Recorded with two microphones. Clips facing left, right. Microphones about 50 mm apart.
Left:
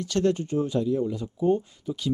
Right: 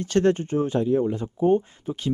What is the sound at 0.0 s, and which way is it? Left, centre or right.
Speech, right.